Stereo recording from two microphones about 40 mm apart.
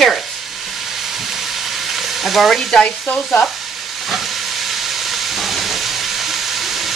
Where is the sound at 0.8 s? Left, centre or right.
Centre.